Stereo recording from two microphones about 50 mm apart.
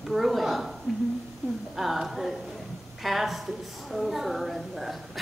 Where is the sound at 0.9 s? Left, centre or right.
Centre.